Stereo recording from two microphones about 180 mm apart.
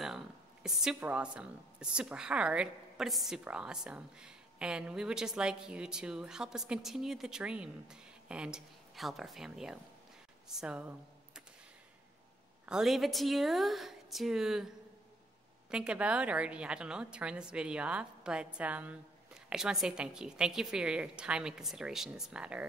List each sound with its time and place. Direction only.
0.7 s a woman's voice: 5° right (ahead or behind)
12.6 s a woman's voice: centre (ahead or behind)
15.7 s a woman's voice: 5° right (ahead or behind)